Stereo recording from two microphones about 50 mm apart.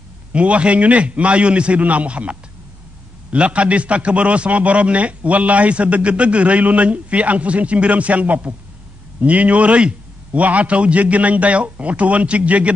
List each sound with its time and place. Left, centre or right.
0.3 s a man's voice: right